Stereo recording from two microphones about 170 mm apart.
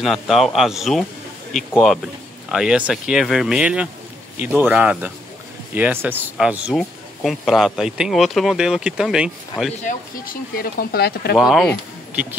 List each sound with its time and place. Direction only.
0.0 s speech: centre (ahead or behind)
2.5 s speech: 5° right (ahead or behind)
9.8 s speech: 55° left (ahead or behind)
11.3 s speech: centre (ahead or behind)